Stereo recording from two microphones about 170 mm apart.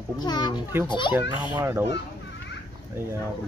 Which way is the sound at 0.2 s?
25° left (ahead or behind).